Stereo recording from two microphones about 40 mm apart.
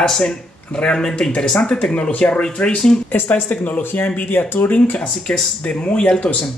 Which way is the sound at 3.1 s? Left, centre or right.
Left.